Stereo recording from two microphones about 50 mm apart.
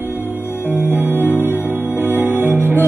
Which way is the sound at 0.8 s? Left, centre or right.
Right.